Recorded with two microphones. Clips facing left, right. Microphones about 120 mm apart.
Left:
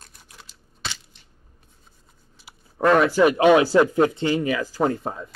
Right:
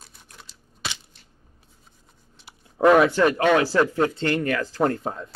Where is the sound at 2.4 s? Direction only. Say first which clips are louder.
Even; centre (ahead or behind).